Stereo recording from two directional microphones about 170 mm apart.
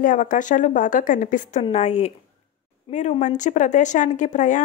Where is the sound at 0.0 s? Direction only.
50° left (ahead or behind).